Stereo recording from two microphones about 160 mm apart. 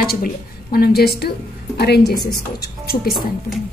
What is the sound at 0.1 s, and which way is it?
A woman's voice, 70° left (ahead or behind).